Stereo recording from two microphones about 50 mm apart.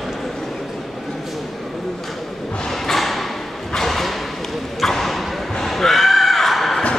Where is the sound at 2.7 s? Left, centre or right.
Centre.